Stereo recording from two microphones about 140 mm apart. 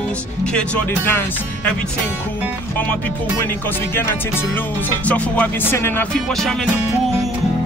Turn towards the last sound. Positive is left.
turn(degrees=15)  # may be behind; listen again after turning